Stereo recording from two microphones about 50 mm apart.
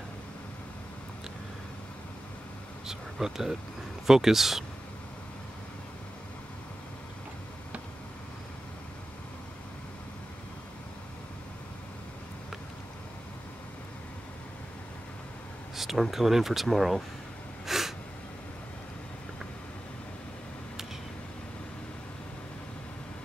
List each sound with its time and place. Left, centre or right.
2.9 s speech: centre
15.7 s speech: centre
17.6 s gasp: centre